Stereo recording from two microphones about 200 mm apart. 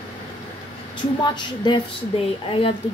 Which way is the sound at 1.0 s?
20° left (ahead or behind).